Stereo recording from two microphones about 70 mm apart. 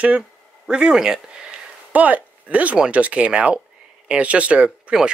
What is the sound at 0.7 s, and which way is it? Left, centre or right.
Speech, centre.